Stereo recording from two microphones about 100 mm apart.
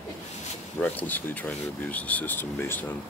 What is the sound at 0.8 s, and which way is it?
Speech, 20° left (ahead or behind).